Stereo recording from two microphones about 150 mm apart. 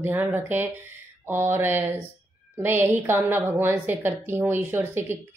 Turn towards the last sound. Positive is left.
turn(degrees=-15)  # may be behind; listen again after turning